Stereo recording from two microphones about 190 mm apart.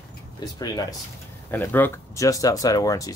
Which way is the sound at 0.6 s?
20° left (ahead or behind).